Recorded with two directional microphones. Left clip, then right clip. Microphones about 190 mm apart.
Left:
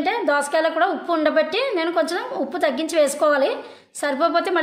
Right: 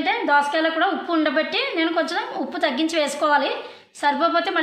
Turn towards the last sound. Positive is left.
turn(degrees=65)  # may be behind; listen again after turning